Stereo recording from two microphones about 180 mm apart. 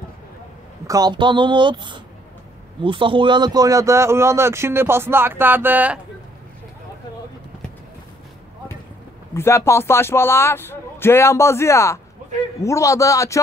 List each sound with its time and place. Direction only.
0.8 s speech: 20° right (ahead or behind)
9.3 s a man's voice: 15° left (ahead or behind)